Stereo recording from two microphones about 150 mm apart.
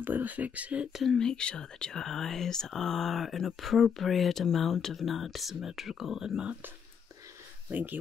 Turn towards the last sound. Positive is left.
turn(degrees=-10)  # may be behind; listen again after turning